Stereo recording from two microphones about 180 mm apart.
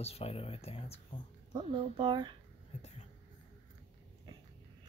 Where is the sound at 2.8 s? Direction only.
35° left (ahead or behind).